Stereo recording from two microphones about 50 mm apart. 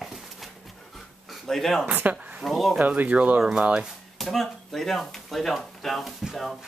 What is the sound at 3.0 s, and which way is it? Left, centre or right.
Speech, right.